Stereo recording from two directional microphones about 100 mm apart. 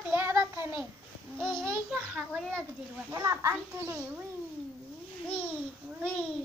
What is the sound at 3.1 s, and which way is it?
A child's voice, 30° right (ahead or behind).